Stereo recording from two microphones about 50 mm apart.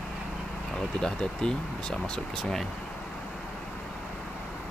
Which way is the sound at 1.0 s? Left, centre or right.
Centre.